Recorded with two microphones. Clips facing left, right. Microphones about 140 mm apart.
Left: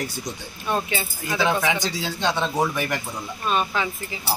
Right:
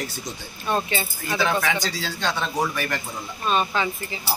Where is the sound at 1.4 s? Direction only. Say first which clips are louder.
Left 1 dB; 15° left (ahead or behind).